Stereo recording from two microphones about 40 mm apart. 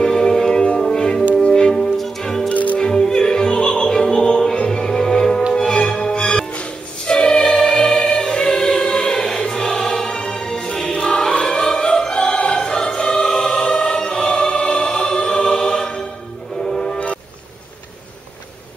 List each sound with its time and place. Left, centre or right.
0.0 s music: centre
2.5 s music: left
2.8 s opera: centre
5.5 s music: centre
11.7 s opera: centre
12.3 s music: left
13.3 s choir: centre
16.6 s train: centre